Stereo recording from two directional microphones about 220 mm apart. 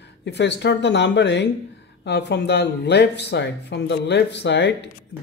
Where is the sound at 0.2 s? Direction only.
50° left (ahead or behind).